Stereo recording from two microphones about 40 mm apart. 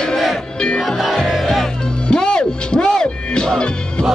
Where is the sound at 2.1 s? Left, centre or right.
Left.